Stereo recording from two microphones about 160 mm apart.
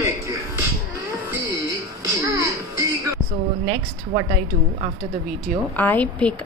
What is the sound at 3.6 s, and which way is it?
Speech, 35° right (ahead or behind).